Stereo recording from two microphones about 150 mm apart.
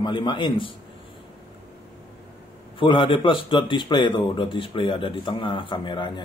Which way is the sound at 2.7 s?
35° left (ahead or behind).